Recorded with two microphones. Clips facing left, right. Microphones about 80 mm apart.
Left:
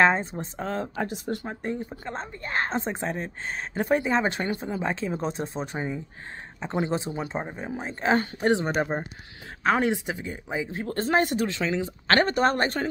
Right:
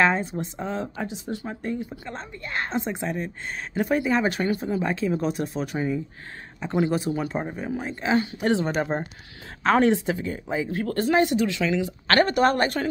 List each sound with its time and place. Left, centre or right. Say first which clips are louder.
0.0 s speech: left 1 dB; left
1.5 s a woman's voice: right 1 dB; left
8.0 s speech: left 1 dB; left
8.5 s a woman's voice: left 1 dB; left
8.7 s a woman's voice: right 1 dB; centre; by 12.8 s left